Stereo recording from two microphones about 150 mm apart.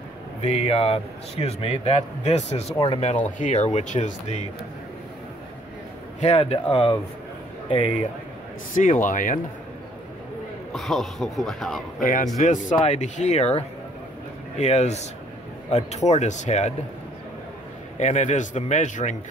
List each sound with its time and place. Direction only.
0.4 s speech: 40° left (ahead or behind)
6.2 s speech: 45° left (ahead or behind)
9.0 s speech: 60° left (ahead or behind)
10.7 s speech: centre (ahead or behind)
12.0 s speech: 60° left (ahead or behind)
17.9 s speech: 55° left (ahead or behind)